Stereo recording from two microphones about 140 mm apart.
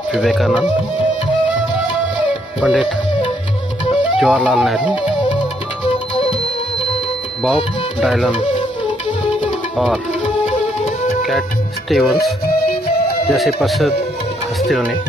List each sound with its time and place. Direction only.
0.1 s speech: centre (ahead or behind)
2.6 s speech: 5° right (ahead or behind)
4.2 s speech: 5° left (ahead or behind)
7.4 s speech: centre (ahead or behind)
11.9 s speech: centre (ahead or behind)
12.6 s music: 90° left
13.3 s speech: centre (ahead or behind)